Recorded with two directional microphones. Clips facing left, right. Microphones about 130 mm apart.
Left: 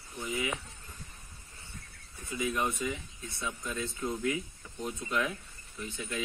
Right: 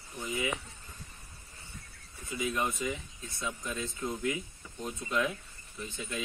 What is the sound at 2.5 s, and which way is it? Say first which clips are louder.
Speech: even; centre (ahead or behind).